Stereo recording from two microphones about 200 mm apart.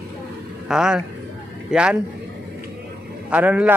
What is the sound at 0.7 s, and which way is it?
Speech, 5° right (ahead or behind).